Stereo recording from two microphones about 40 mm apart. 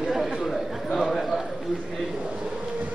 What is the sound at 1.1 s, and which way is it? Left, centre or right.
Clip-clop, centre.